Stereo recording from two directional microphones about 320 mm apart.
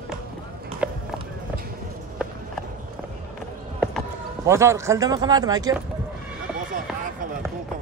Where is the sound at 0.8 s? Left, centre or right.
Centre.